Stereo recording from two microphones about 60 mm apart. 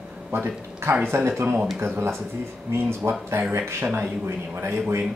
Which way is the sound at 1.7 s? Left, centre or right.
Right.